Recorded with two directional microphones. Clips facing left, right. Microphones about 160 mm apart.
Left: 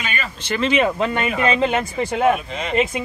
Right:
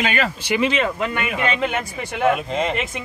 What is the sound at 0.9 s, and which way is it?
Speech, 35° left (ahead or behind).